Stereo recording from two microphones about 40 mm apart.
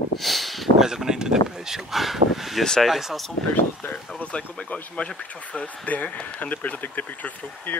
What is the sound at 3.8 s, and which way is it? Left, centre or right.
Speech, left.